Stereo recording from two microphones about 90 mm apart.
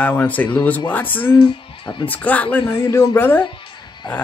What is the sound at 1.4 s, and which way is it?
Speech, 65° left (ahead or behind).